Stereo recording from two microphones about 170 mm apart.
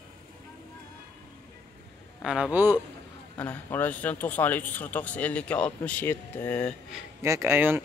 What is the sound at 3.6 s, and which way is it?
Speech, 10° left (ahead or behind).